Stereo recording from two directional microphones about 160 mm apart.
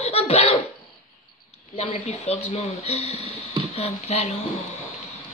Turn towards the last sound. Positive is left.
turn(degrees=40)  # may be behind; listen again after turning